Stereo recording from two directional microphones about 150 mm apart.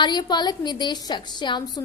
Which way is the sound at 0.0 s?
30° left (ahead or behind).